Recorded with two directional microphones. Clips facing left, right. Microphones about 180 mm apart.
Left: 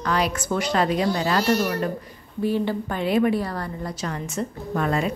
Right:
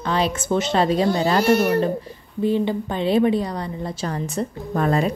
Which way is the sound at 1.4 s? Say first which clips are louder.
Right 6 dB; 55° right (ahead or behind).